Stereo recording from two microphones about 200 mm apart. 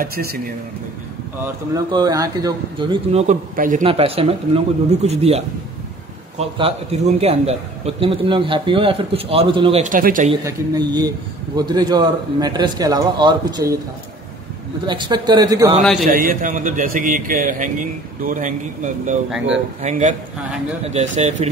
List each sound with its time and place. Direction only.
0.0 s a man's voice: 50° right (ahead or behind)
1.9 s a man's voice: 20° right (ahead or behind); by 3.8 s 40° right (ahead or behind)
3.8 s a man's voice: 30° right (ahead or behind)
7.2 s a man's voice: 30° right (ahead or behind)
10.4 s a man's voice: 20° right (ahead or behind)
14.9 s a man's voice: 25° right (ahead or behind)
16.0 s a man's voice: 45° right (ahead or behind)
19.3 s speech: 5° right (ahead or behind)
19.8 s speech: 35° right (ahead or behind)